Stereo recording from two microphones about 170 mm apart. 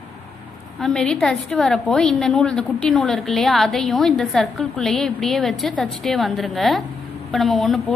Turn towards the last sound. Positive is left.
turn(degrees=0)  # may be behind; listen again after turning